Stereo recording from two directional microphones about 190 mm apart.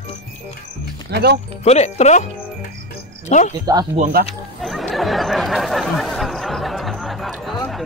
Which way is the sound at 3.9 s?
40° right (ahead or behind).